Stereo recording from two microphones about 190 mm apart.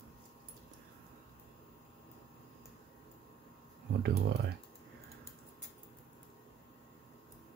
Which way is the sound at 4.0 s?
60° right (ahead or behind).